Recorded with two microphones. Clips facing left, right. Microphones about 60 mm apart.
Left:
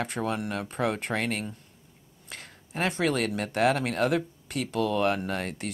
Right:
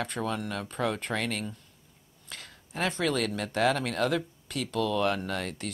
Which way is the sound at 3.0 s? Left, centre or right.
Centre.